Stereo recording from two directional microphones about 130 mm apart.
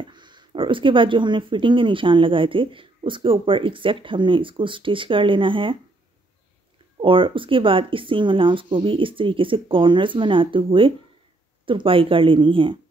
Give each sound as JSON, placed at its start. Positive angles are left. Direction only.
{"t": 0.0, "sound": "speech", "side_deg": -35}
{"t": 7.0, "sound": "speech", "side_deg": -40}